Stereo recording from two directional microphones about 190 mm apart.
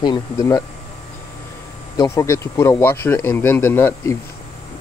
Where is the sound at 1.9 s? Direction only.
15° left (ahead or behind).